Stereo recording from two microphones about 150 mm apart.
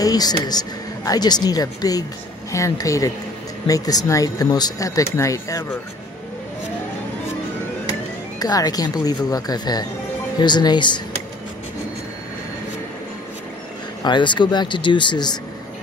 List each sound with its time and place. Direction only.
0.0 s speech: 25° left (ahead or behind)
8.4 s speech: 25° left (ahead or behind)
14.0 s speech: 30° left (ahead or behind)